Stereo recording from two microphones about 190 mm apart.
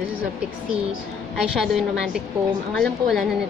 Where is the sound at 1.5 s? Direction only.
Centre (ahead or behind).